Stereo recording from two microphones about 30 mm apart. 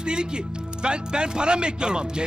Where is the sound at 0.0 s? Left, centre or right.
Right.